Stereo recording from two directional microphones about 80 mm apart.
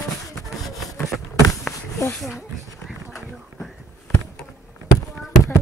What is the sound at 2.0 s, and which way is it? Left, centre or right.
Speech, left.